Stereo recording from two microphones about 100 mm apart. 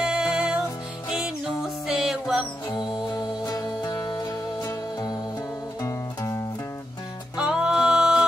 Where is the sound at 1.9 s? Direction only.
5° right (ahead or behind).